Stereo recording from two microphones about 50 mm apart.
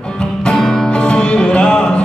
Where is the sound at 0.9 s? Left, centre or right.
Centre.